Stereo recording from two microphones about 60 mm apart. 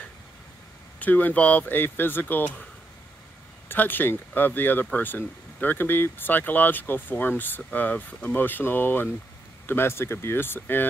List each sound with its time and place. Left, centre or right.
0.9 s speech: left
3.6 s speech: left